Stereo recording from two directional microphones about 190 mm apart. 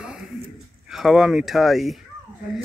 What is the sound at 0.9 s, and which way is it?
Speech, centre (ahead or behind).